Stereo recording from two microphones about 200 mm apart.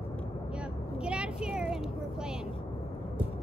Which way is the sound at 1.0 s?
5° right (ahead or behind).